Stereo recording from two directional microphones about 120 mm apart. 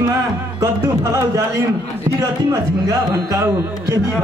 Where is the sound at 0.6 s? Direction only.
25° right (ahead or behind).